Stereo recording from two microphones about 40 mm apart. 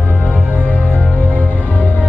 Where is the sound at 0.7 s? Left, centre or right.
Left.